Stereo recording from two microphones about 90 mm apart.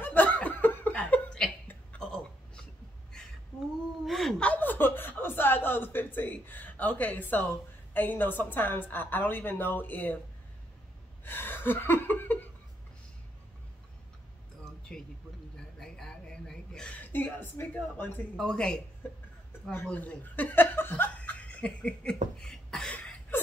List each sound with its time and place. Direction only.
0.0 s laughter: 20° left (ahead or behind)
2.0 s a sound: 5° left (ahead or behind)
4.0 s gasp: centre (ahead or behind)
4.4 s chuckle: 15° left (ahead or behind)
7.9 s a woman's voice: 20° left (ahead or behind)
11.2 s chuckle: 25° left (ahead or behind)
14.6 s a sound: 5° left (ahead or behind); by 17.6 s 20° left (ahead or behind)
17.9 s a woman's voice: 20° left (ahead or behind)
18.4 s speech: 10° left (ahead or behind)
19.7 s speech: 20° left (ahead or behind)
22.9 s a sound: 20° left (ahead or behind)